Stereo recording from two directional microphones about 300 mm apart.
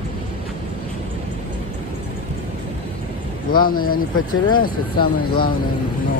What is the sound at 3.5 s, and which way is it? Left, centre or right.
Speech, left.